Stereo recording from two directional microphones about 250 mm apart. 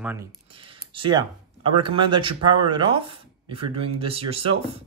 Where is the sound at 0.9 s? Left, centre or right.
Centre.